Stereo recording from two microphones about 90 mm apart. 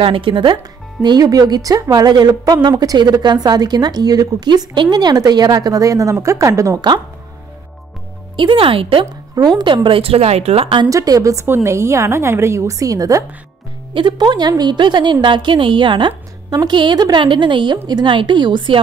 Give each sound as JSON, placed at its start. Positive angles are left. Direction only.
{"t": 0.0, "sound": "speech", "side_deg": -75}
{"t": 1.0, "sound": "speech", "side_deg": -45}
{"t": 8.4, "sound": "speech", "side_deg": -75}
{"t": 9.3, "sound": "speech", "side_deg": -50}
{"t": 10.9, "sound": "a woman's voice", "side_deg": -40}
{"t": 11.4, "sound": "a woman's voice", "side_deg": -30}
{"t": 13.9, "sound": "a woman's voice", "side_deg": -60}